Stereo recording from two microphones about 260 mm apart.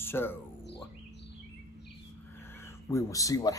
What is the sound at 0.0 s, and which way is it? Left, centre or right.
Speech, centre.